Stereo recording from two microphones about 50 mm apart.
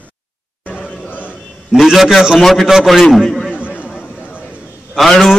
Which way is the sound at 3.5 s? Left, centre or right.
Left.